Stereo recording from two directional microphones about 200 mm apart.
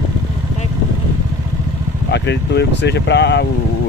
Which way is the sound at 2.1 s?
60° left (ahead or behind).